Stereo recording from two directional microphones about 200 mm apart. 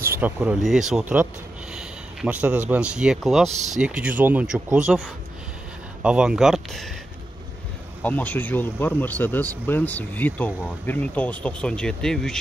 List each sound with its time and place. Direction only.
0.0 s speech: 10° right (ahead or behind)
3.5 s speech: 35° right (ahead or behind)
3.8 s speech: 5° right (ahead or behind)
8.0 s speech: 10° left (ahead or behind)